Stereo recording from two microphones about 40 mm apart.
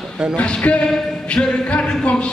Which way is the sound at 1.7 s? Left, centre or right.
Left.